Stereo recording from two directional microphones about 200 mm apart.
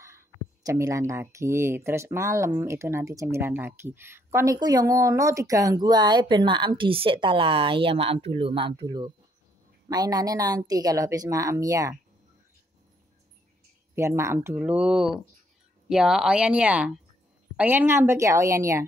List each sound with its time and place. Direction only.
0.7 s speech: 15° right (ahead or behind)
13.9 s speech: 15° right (ahead or behind)